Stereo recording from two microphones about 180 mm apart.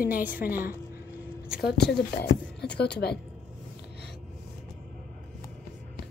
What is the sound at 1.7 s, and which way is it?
Speech, 65° left (ahead or behind).